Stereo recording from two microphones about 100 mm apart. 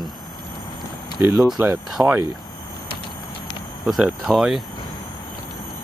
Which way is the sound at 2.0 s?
35° right (ahead or behind).